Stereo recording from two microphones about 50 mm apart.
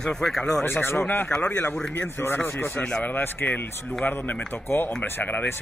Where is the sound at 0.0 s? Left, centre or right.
Centre.